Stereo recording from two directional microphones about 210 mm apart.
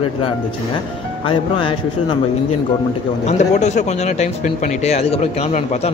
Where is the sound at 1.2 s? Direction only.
25° left (ahead or behind).